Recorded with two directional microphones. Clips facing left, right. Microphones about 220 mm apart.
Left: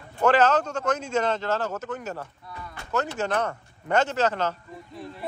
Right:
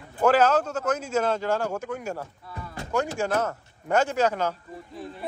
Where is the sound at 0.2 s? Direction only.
10° right (ahead or behind).